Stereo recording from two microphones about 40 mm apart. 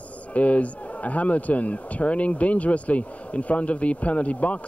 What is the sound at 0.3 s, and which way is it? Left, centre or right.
Speech, left.